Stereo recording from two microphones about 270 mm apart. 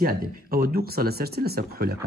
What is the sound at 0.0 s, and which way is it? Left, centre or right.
Speech, right.